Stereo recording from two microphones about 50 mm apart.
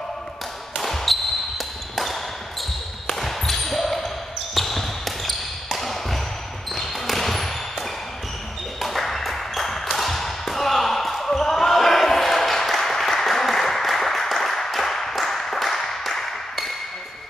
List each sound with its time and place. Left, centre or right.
0.7 s basketball bounce: centre
3.1 s basketball bounce: centre
8.8 s a sound: centre